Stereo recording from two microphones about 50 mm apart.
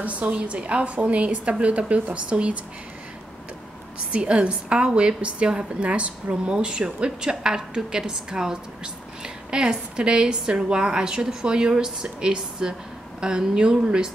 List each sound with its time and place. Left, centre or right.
0.0 s a woman's voice: right
4.1 s a woman's voice: right